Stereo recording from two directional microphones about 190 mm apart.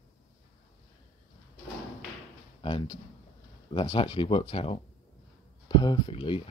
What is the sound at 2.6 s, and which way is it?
Speech, 25° left (ahead or behind).